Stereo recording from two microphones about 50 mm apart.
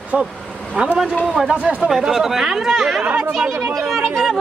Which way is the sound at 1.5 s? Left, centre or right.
Right.